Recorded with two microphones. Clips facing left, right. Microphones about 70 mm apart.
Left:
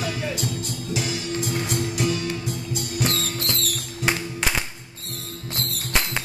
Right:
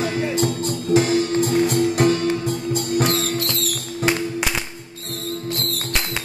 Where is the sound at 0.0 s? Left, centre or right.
Right.